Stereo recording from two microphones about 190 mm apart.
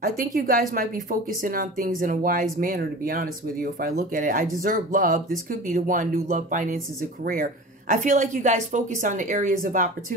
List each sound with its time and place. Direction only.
0.0 s a woman's voice: 45° right (ahead or behind)
7.9 s a woman's voice: 40° right (ahead or behind)